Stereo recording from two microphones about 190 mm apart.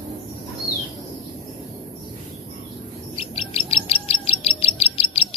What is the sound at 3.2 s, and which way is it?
Music, 30° left (ahead or behind).